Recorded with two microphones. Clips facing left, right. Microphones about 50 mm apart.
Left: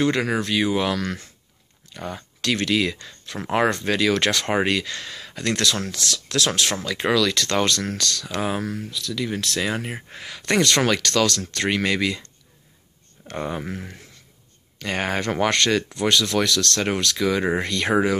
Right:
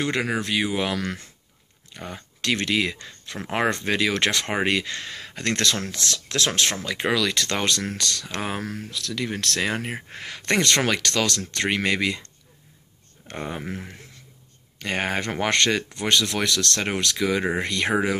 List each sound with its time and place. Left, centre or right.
0.0 s speech: centre
2.4 s speech: right
6.8 s speech: centre; by 8.8 s right
8.9 s speech: right
13.3 s speech: centre
14.8 s speech: right